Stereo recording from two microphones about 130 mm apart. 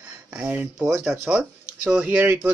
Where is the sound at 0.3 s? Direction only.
10° right (ahead or behind).